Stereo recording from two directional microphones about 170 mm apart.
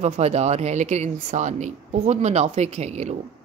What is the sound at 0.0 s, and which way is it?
A woman's voice, 40° right (ahead or behind).